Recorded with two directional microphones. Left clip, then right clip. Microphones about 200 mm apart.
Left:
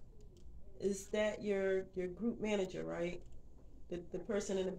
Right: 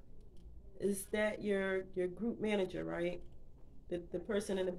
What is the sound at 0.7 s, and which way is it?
Speech, 40° right (ahead or behind).